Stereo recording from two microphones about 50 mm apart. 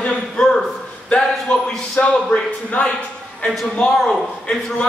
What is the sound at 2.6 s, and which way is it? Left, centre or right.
Speech, left.